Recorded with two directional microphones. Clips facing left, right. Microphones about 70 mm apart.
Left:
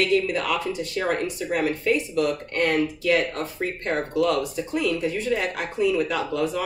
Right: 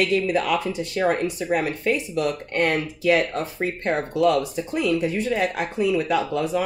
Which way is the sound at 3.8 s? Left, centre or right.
Right.